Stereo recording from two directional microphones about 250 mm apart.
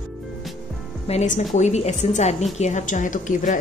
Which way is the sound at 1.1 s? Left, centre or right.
Left.